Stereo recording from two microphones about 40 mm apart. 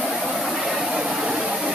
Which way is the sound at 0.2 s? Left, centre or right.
Centre.